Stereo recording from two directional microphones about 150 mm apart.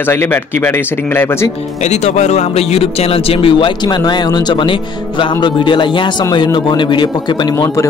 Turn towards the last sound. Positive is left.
turn(degrees=20)  # may be behind; listen again after turning